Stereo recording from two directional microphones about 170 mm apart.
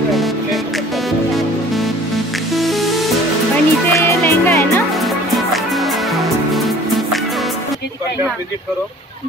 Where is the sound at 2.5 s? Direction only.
Centre (ahead or behind).